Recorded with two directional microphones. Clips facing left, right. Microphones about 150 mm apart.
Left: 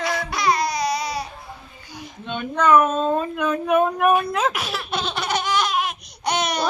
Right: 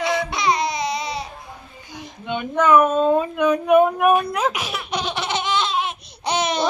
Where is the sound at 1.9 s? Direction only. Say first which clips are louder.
Right 3 dB; 20° right (ahead or behind).